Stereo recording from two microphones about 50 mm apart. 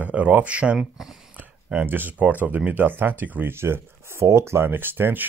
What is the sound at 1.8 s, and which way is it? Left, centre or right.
Speech, right.